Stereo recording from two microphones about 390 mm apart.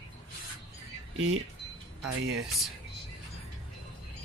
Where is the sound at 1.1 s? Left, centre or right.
Right.